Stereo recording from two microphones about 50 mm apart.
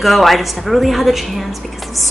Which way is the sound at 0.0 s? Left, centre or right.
Centre.